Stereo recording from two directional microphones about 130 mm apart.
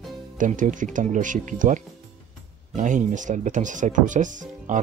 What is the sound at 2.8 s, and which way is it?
Speech, 75° right (ahead or behind).